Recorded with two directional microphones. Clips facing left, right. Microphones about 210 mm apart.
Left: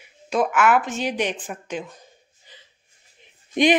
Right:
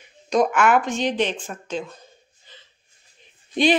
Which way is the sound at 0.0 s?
5° left (ahead or behind).